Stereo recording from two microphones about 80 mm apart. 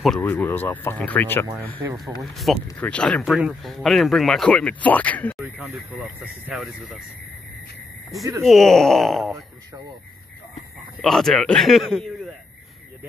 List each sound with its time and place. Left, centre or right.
0.2 s speech: left
1.8 s speech: right
2.3 s speech: centre
2.8 s speech: centre
3.3 s speech: centre
4.5 s speech: centre
5.4 s speech: right
6.5 s speech: centre
8.5 s speech: centre
11.0 s speech: centre